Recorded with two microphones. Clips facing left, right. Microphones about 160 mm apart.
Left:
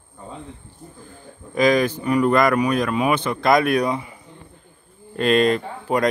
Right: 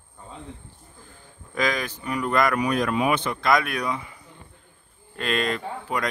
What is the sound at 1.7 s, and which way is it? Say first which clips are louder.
Speech: left 10 dB; 40° left (ahead or behind).